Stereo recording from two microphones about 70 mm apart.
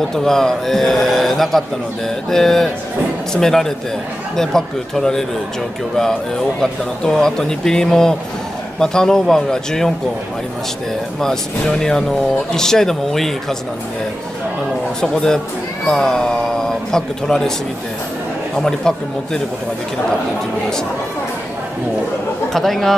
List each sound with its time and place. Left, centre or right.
0.1 s speech: centre
6.6 s speech: centre
11.1 s speech: centre
15.0 s speech: centre
18.6 s speech: centre
22.5 s speech: centre